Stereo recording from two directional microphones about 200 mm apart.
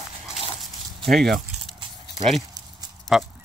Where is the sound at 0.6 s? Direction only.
Centre (ahead or behind).